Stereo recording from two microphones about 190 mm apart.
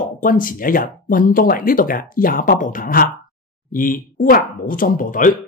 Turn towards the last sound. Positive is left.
turn(degrees=45)  # may be behind; listen again after turning